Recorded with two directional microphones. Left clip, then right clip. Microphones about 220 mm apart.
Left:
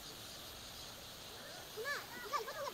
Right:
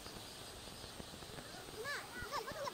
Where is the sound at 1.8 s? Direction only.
50° right (ahead or behind).